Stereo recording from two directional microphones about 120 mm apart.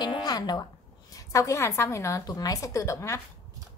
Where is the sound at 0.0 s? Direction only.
35° left (ahead or behind).